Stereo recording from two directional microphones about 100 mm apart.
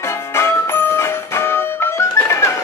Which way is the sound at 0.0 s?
25° left (ahead or behind).